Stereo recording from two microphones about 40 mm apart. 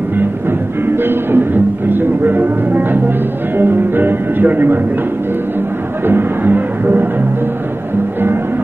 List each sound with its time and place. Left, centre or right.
0.2 s music: right
3.5 s speech: right
6.0 s music: right